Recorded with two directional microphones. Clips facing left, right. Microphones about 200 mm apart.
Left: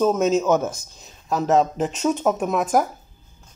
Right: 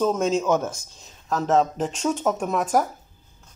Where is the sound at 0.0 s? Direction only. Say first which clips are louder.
Left 3 dB; 5° left (ahead or behind).